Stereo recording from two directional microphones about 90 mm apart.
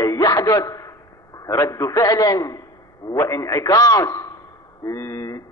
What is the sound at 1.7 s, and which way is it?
A man's voice, 40° left (ahead or behind).